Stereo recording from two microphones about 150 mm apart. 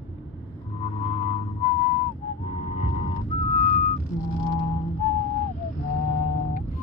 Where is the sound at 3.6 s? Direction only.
55° left (ahead or behind).